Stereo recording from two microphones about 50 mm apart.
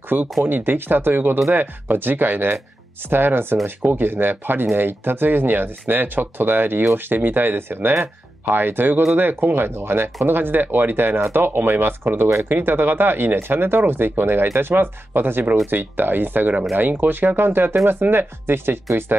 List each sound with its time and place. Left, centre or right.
0.1 s speech: right